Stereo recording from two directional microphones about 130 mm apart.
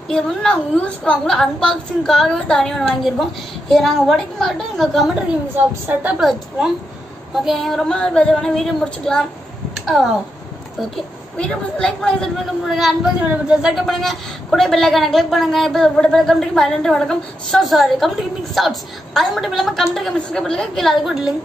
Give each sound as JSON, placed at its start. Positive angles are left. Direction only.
{"t": 0.1, "sound": "a woman's voice", "side_deg": 5}
{"t": 11.3, "sound": "a woman's voice", "side_deg": 10}